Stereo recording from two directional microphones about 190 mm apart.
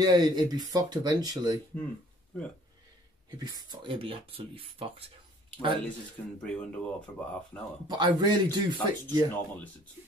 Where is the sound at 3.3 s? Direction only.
20° right (ahead or behind).